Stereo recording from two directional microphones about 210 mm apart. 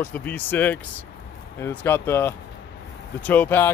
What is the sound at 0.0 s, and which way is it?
Speech, 10° left (ahead or behind).